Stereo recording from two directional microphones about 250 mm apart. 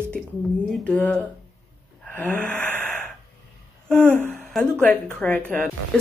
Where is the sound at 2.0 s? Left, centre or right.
Centre.